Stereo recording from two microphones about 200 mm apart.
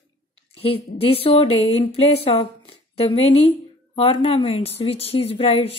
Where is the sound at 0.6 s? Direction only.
30° left (ahead or behind).